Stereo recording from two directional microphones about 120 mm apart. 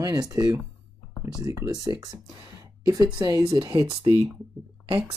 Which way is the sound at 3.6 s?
45° right (ahead or behind).